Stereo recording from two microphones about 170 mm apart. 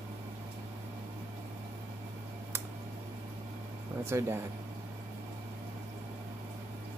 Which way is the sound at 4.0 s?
15° right (ahead or behind).